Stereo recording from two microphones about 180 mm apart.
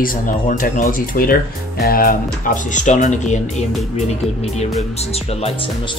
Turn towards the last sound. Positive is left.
turn(degrees=30)  # may be behind; listen again after turning